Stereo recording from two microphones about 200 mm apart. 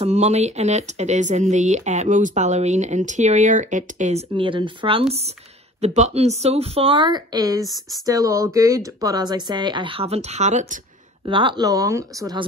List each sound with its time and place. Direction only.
0.0 s speech: 35° right (ahead or behind)
7.6 s speech: centre (ahead or behind)
8.0 s speech: 15° right (ahead or behind); by 10.8 s 35° right (ahead or behind)
11.2 s speech: 25° right (ahead or behind)